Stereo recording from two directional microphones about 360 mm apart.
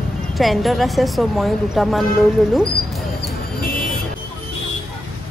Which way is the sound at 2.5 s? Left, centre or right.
Centre.